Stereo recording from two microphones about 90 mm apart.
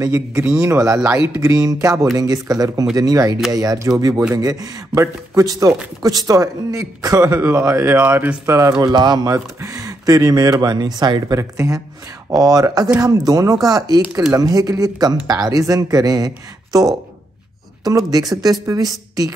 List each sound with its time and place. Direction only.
0.0 s a man's voice: 35° right (ahead or behind)
0.9 s speech: 10° right (ahead or behind)
1.4 s a man's voice: 40° right (ahead or behind); by 8.4 s 20° right (ahead or behind)
8.5 s a man's voice: 35° right (ahead or behind)
8.8 s speech: 50° right (ahead or behind)
9.3 s speech: 35° right (ahead or behind)
11.3 s a man's voice: 35° right (ahead or behind)